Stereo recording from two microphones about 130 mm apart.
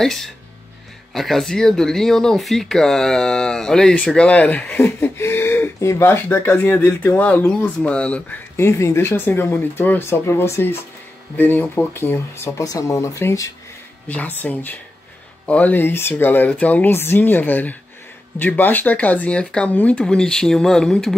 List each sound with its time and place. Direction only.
0.0 s speech: 5° left (ahead or behind); by 13.5 s 20° left (ahead or behind)
14.0 s speech: 10° left (ahead or behind)